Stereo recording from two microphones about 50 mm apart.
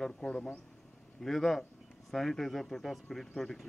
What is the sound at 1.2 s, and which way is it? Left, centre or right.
Speech, centre.